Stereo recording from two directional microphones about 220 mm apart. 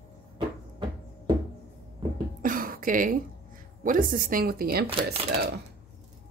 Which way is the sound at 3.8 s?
40° right (ahead or behind).